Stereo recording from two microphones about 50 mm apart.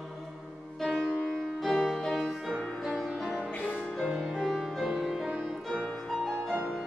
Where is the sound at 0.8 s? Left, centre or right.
Centre.